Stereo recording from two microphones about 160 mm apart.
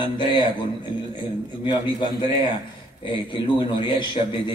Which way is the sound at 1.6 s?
30° left (ahead or behind).